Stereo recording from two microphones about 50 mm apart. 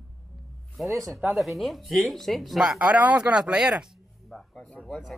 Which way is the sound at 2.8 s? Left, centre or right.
Right.